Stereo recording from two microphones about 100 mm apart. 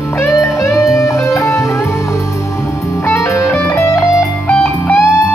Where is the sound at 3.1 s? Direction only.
30° left (ahead or behind).